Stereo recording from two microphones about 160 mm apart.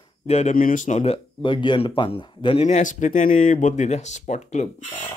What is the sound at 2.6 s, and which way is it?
Speech, 50° left (ahead or behind).